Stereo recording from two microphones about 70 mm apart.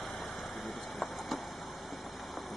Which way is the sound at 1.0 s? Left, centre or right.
Centre.